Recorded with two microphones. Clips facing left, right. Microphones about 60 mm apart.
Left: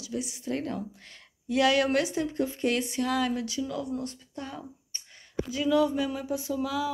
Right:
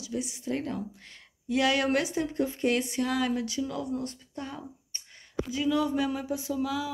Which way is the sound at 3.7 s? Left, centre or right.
Right.